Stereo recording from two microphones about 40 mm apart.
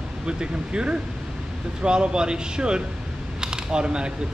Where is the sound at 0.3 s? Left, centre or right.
Right.